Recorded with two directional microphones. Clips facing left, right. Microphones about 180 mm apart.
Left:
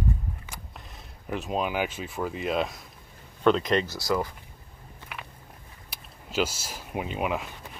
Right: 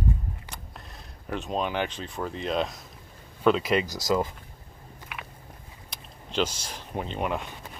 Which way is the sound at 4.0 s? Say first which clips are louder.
Right 2 dB; 20° right (ahead or behind).